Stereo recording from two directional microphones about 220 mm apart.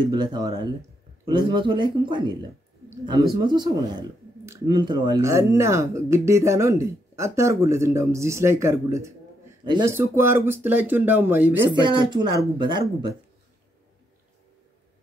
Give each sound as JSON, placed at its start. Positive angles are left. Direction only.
{"t": 0.1, "sound": "a man's voice", "side_deg": -20}
{"t": 11.7, "sound": "a man's voice", "side_deg": -20}